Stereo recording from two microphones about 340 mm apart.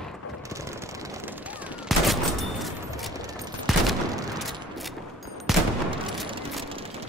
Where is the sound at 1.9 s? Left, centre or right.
Centre.